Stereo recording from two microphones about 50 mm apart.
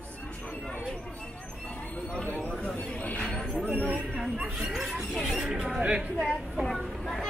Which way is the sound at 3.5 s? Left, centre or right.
Right.